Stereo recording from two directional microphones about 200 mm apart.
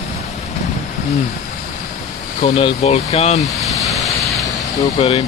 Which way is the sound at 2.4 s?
35° left (ahead or behind).